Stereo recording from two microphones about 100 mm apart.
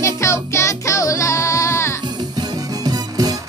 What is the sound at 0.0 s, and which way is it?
Music, 30° left (ahead or behind).